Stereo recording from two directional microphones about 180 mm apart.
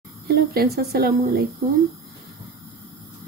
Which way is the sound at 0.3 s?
60° right (ahead or behind).